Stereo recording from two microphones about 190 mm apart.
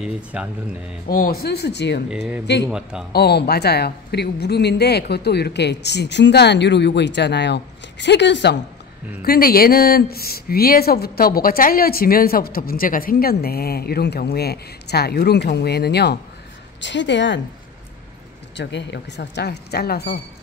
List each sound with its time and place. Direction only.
0.0 s speech: 5° right (ahead or behind)
1.0 s a woman's voice: 50° left (ahead or behind)
2.0 s speech: 5° right (ahead or behind)
2.4 s a woman's voice: 60° left (ahead or behind)
2.7 s speech: 5° right (ahead or behind)
3.1 s a woman's voice: 60° left (ahead or behind)
9.2 s a woman's voice: 50° left (ahead or behind); by 17.4 s 70° left (ahead or behind)
18.6 s a woman's voice: 65° left (ahead or behind)